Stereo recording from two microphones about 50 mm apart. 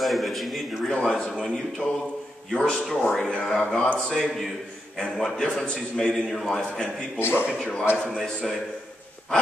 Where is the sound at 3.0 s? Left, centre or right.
Centre.